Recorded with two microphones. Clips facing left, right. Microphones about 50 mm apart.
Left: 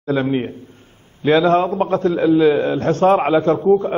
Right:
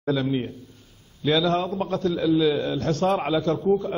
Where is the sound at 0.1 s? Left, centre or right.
Left.